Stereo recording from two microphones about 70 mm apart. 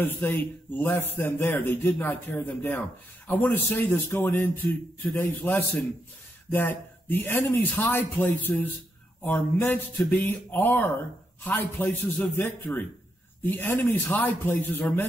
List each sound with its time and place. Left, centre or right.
0.0 s a man's voice: left